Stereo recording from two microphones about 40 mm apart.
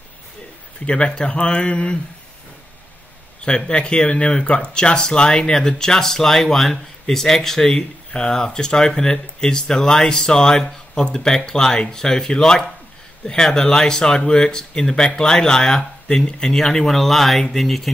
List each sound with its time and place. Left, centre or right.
0.7 s speech: left
3.4 s speech: left; by 17.8 s centre